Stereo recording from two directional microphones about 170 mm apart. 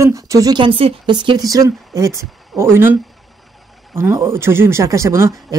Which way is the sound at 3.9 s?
15° right (ahead or behind).